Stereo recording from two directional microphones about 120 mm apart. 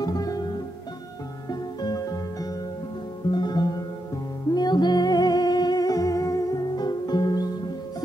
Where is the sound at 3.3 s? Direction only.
35° left (ahead or behind).